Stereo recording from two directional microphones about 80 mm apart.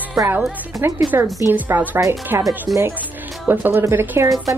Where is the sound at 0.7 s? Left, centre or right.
Right.